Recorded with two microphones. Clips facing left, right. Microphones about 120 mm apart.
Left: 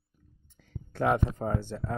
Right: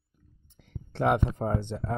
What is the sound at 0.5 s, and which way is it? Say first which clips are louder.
Speech: right 1 dB; 20° right (ahead or behind).